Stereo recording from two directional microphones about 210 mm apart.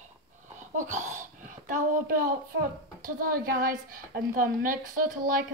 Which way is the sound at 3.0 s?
40° right (ahead or behind).